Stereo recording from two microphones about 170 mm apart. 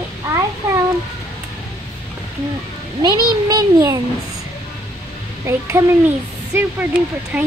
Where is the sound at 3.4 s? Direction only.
20° right (ahead or behind).